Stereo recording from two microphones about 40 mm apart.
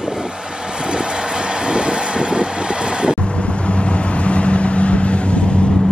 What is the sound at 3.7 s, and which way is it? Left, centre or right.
Vehicle, left.